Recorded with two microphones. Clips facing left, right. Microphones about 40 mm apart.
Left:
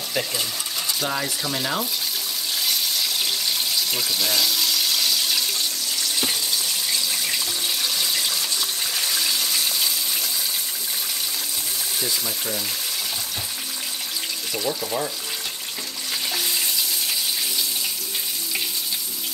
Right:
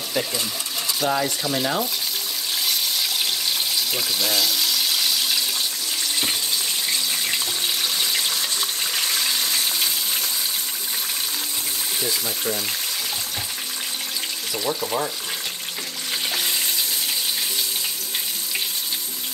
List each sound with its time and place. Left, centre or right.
1.0 s speech: centre
3.9 s water: centre
14.7 s speech: right